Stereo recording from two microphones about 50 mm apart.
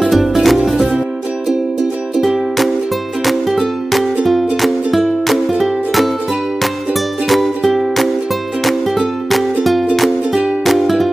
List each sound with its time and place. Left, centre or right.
0.0 s music: centre
2.1 s music: centre